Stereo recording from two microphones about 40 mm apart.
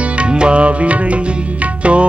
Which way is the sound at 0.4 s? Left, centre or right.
Right.